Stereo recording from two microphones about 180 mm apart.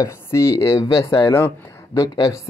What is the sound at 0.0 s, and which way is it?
Speech, 15° left (ahead or behind).